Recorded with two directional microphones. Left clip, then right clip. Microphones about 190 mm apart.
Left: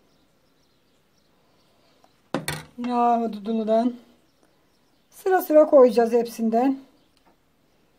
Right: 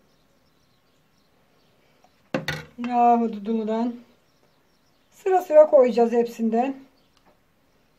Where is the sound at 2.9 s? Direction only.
40° left (ahead or behind).